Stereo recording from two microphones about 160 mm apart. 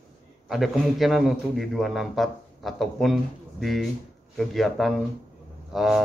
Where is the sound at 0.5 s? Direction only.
Centre (ahead or behind).